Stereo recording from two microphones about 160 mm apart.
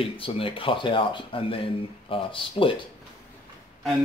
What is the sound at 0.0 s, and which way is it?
Speech, 35° left (ahead or behind).